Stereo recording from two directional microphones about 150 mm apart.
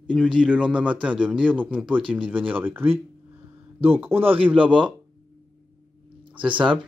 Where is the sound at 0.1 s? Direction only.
5° right (ahead or behind).